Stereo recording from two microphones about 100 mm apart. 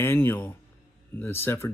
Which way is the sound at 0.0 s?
25° left (ahead or behind).